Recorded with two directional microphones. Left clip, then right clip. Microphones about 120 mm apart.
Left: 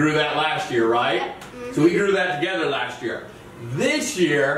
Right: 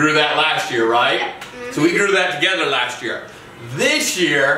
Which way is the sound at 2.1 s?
15° right (ahead or behind).